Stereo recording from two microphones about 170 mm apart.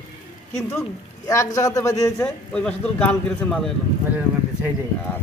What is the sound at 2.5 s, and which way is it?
A man's voice, 5° left (ahead or behind).